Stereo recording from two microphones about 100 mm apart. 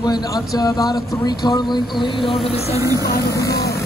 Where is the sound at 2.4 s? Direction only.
90° left.